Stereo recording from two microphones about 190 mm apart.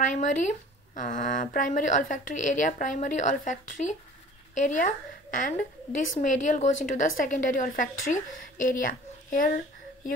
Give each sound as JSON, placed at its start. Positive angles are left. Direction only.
{"t": 0.0, "sound": "a woman's voice", "side_deg": 40}